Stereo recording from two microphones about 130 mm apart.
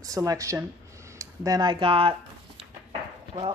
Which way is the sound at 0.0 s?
25° right (ahead or behind).